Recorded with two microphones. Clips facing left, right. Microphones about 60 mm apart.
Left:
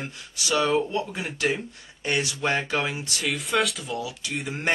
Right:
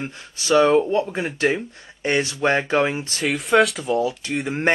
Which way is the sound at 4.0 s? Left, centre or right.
Right.